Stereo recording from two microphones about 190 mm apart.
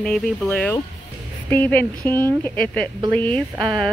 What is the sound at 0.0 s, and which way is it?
Speech, 5° left (ahead or behind).